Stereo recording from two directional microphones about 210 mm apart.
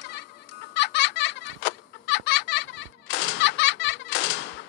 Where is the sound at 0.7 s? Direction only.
55° left (ahead or behind).